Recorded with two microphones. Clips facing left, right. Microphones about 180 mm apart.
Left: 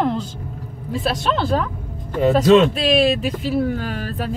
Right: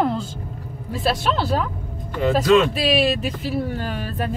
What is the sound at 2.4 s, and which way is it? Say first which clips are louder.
Speech: left 3 dB; 20° left (ahead or behind).